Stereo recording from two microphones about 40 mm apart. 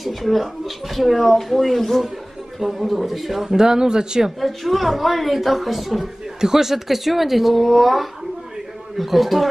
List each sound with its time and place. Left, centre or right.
0.0 s a woman's voice: centre
3.5 s speech: centre
4.4 s a woman's voice: centre